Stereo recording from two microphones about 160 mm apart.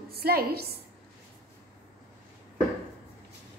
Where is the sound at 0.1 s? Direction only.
75° right (ahead or behind).